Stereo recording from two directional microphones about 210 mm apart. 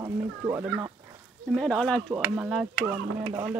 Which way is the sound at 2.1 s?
5° right (ahead or behind).